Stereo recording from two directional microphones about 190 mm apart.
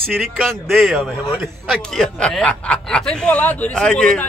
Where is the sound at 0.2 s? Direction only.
Centre (ahead or behind).